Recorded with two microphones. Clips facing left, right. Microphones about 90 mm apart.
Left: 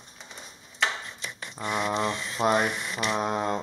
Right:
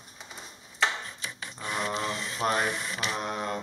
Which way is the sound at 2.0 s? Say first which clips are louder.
Left 4 dB; 30° left (ahead or behind).